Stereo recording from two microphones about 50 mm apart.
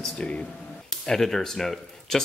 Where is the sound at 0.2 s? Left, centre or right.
Left.